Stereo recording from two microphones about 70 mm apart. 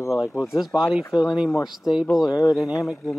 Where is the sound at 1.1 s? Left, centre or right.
Left.